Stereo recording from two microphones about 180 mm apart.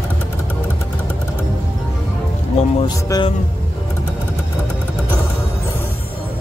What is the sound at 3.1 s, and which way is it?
Speech, 25° left (ahead or behind).